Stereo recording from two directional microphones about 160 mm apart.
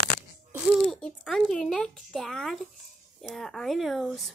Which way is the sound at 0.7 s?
Centre (ahead or behind).